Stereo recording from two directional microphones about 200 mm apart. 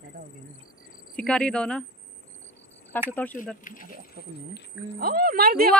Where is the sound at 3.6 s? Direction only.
45° left (ahead or behind).